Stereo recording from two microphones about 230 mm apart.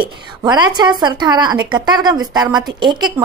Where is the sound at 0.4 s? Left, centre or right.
Centre.